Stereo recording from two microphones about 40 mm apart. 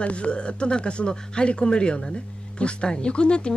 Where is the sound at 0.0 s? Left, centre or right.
Left.